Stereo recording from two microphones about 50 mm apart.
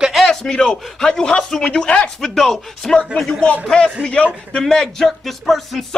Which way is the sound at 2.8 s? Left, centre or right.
Centre.